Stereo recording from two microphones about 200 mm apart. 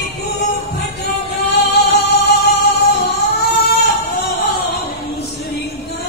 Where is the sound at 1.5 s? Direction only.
55° left (ahead or behind).